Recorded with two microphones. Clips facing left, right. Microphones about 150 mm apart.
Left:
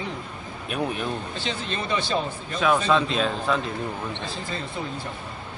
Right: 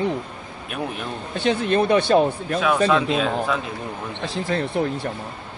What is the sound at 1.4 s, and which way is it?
Speech, 55° right (ahead or behind).